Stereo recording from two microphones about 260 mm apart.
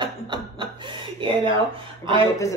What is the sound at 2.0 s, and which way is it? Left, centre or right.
Speech, centre.